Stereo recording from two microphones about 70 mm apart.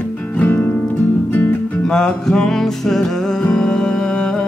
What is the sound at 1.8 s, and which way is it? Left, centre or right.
Music, centre.